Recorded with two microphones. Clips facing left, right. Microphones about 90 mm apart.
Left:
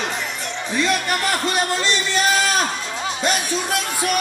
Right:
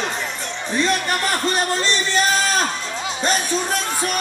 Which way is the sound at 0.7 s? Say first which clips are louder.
Right 1 dB; 35° right (ahead or behind).